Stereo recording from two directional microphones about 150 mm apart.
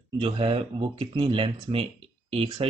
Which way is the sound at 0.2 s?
35° right (ahead or behind).